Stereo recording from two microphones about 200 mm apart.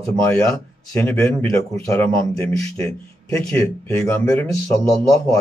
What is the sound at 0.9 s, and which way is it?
A man's voice, 10° left (ahead or behind).